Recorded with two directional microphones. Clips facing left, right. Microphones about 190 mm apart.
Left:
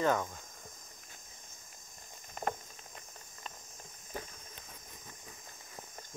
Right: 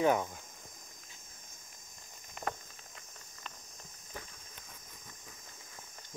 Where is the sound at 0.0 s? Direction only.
15° right (ahead or behind).